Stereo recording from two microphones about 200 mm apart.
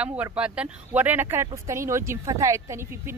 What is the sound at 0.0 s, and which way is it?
Speech, 5° right (ahead or behind).